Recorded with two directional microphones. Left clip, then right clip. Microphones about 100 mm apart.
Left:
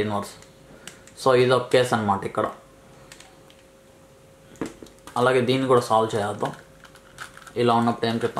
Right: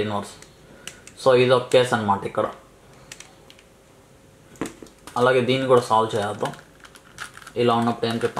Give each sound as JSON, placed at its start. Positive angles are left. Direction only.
{"t": 0.0, "sound": "speech", "side_deg": 35}
{"t": 4.6, "sound": "a sound", "side_deg": -5}
{"t": 5.1, "sound": "speech", "side_deg": 35}
{"t": 6.4, "sound": "typing", "side_deg": 0}
{"t": 7.5, "sound": "speech", "side_deg": 30}